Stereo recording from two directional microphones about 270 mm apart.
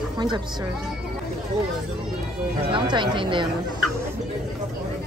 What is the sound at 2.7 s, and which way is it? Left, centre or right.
Speech, centre.